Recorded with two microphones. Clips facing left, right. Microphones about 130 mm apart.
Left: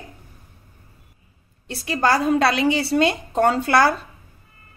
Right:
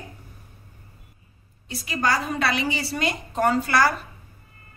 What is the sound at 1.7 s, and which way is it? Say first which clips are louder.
Speech: left 5 dB; 65° left (ahead or behind).